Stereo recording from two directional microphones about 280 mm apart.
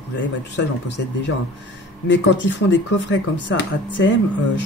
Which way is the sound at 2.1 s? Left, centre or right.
Left.